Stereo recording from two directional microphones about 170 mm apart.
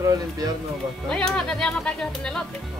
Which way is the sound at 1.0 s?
5° left (ahead or behind).